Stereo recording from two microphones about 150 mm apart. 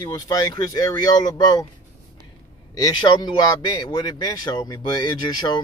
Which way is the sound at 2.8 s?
25° left (ahead or behind).